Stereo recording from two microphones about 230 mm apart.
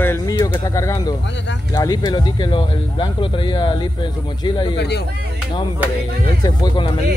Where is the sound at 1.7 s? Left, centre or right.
Centre.